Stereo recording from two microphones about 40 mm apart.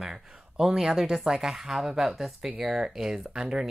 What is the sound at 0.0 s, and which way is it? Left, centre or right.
Speech, centre.